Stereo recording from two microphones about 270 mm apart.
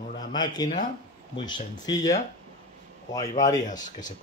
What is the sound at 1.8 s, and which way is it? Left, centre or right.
Speech, centre.